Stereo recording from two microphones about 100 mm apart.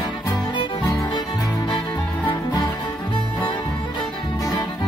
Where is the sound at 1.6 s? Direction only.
50° left (ahead or behind).